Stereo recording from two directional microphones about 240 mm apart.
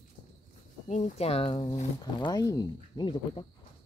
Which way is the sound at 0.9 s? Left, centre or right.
Left.